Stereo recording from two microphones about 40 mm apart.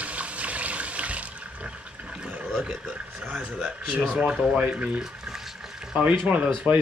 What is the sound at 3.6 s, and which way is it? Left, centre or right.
Speech, right.